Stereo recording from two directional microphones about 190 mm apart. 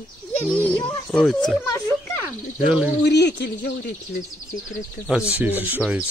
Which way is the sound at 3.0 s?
65° left (ahead or behind).